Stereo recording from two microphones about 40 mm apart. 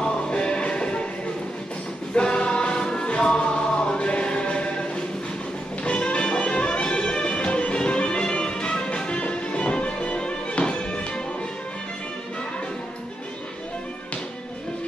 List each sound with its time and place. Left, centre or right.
0.0 s music: left
2.1 s music: left
5.9 s music: left